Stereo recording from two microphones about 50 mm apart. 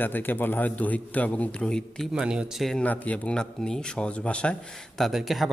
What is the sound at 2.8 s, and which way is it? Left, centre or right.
Speech, left.